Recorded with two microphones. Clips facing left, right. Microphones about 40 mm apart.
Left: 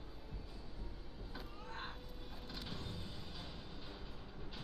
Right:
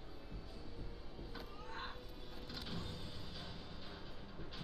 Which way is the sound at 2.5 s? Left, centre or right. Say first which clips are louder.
Right 1 dB; centre.